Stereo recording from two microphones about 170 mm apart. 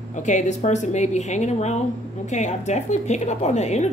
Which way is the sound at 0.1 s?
45° left (ahead or behind).